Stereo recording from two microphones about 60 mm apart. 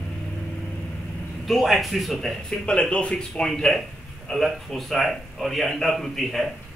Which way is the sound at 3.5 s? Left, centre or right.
Centre.